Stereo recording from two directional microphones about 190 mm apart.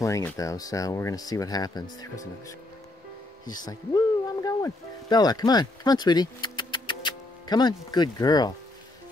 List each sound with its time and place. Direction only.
0.0 s speech: 15° left (ahead or behind)